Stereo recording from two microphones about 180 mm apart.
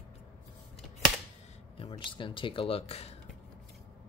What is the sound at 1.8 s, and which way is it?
Speech, 30° left (ahead or behind).